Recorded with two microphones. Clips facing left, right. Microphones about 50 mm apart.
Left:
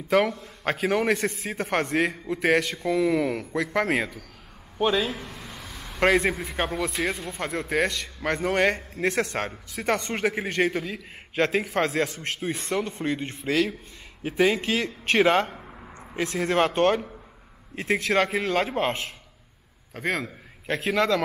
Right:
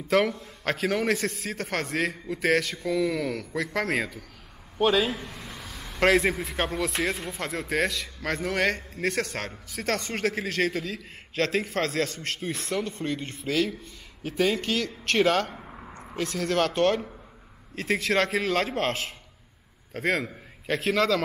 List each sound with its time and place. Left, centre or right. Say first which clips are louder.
0.1 s a man's voice: left 1 dB; centre
1.5 s a man's voice: left 4 dB; centre
15.5 s a sound: right 1 dB; centre
16.2 s a man's voice: left 3 dB; centre